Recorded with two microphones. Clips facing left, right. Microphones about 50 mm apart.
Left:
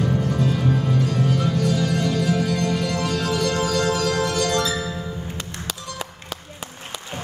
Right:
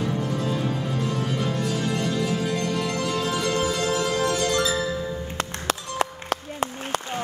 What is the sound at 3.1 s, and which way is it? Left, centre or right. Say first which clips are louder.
Music: left 2 dB; left.